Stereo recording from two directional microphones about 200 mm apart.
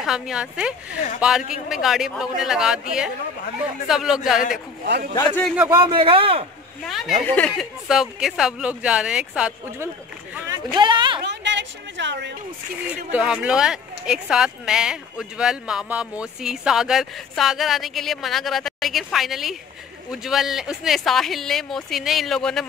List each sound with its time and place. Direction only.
0.0 s speech: 5° right (ahead or behind)
3.8 s speech: centre (ahead or behind)
4.8 s speech: 55° right (ahead or behind)
5.7 s a man's voice: 25° right (ahead or behind)
6.9 s speech: centre (ahead or behind)
10.5 s speech: 20° right (ahead or behind)
11.2 s a woman's voice: 60° right (ahead or behind)
12.8 s speech: 5° right (ahead or behind)